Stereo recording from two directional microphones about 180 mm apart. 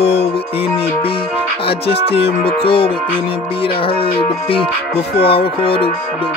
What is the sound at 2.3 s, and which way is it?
Music, 60° left (ahead or behind).